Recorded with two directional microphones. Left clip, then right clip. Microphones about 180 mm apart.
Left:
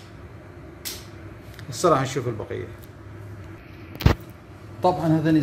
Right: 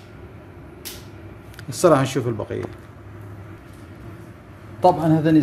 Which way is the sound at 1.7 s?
75° right (ahead or behind).